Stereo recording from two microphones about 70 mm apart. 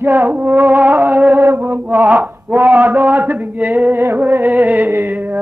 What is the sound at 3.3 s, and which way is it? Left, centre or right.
Mantra, right.